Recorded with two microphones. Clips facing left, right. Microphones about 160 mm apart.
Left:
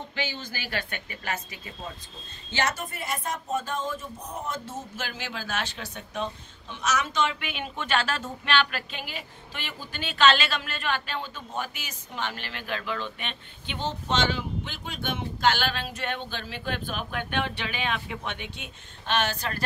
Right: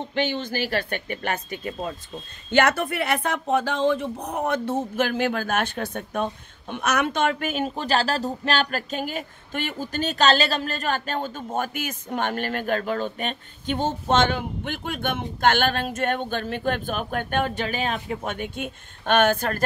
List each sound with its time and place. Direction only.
0.1 s speech: 55° right (ahead or behind)